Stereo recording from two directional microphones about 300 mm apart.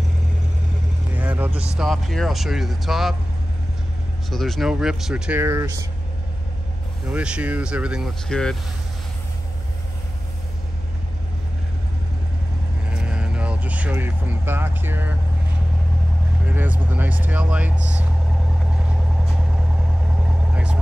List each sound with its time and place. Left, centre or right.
1.1 s speech: centre
4.3 s speech: centre
7.1 s speech: centre
12.9 s vehicle: centre
16.4 s speech: centre
20.5 s vehicle: centre